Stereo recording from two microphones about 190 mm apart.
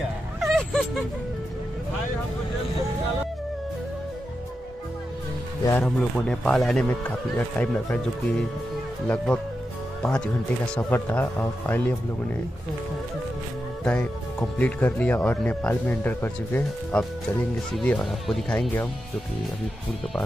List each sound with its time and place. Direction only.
0.4 s a sound: 5° left (ahead or behind)
5.7 s speech: 5° left (ahead or behind)
10.8 s speech: 10° left (ahead or behind)
14.6 s speech: 10° left (ahead or behind)